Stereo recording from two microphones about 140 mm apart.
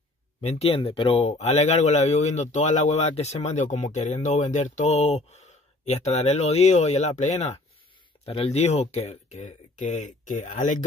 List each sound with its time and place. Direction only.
0.4 s speech: 50° left (ahead or behind)